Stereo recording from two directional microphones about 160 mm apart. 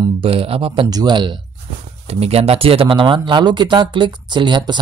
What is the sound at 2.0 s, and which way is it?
Speech, 40° right (ahead or behind).